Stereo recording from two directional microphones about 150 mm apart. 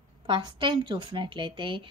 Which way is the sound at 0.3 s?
30° right (ahead or behind).